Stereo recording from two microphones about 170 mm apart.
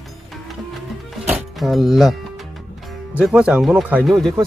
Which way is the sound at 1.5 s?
Centre (ahead or behind).